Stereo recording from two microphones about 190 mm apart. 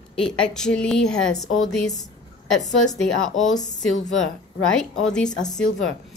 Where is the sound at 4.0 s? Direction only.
85° left.